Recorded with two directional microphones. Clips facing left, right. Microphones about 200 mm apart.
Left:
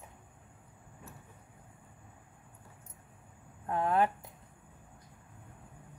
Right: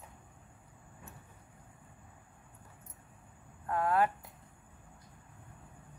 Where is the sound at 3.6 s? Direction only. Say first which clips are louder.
Left 1 dB; 20° left (ahead or behind).